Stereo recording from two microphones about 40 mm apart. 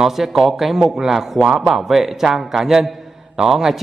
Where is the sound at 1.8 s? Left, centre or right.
Centre.